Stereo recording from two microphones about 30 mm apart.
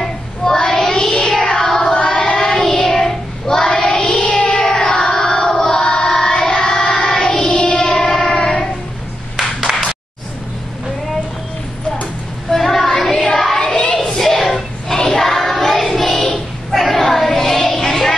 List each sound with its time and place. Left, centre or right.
0.4 s child singing: left
7.1 s music: centre
8.4 s music: left
9.4 s clapping: centre
12.4 s child singing: centre
13.9 s a sound: centre
15.1 s music: centre
16.7 s child singing: centre